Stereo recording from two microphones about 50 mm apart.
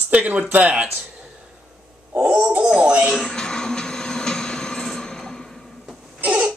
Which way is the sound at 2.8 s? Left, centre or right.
Centre.